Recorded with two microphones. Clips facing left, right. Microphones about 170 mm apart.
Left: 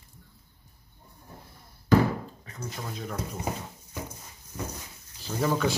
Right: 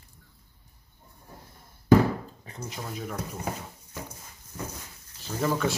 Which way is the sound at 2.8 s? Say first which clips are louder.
Right 1 dB; 5° right (ahead or behind).